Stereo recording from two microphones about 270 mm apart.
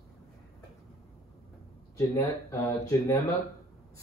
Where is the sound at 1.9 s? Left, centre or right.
Centre.